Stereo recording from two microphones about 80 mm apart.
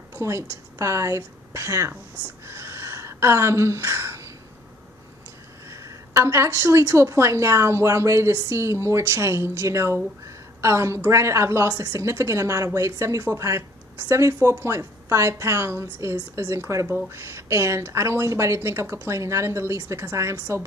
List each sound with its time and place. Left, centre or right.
0.1 s a woman's voice: right
2.4 s a sound: right
5.7 s a woman's voice: right